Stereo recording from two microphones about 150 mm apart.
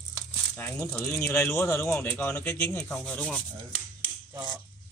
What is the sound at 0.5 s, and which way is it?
Speech, 15° left (ahead or behind).